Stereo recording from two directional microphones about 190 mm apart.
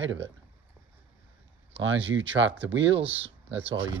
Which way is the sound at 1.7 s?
75° right (ahead or behind).